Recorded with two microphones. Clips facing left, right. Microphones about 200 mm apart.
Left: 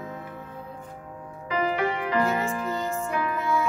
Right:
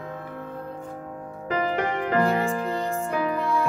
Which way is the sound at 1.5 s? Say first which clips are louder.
Even; 45° right (ahead or behind).